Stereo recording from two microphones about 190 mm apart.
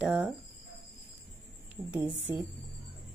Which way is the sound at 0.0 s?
5° right (ahead or behind).